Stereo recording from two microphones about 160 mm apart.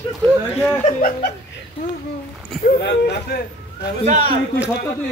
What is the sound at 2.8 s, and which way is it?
Speech, 90° left.